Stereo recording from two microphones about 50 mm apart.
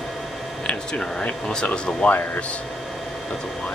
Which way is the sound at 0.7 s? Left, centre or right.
Left.